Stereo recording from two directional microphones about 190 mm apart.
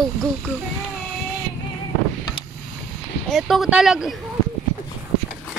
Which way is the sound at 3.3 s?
Centre (ahead or behind).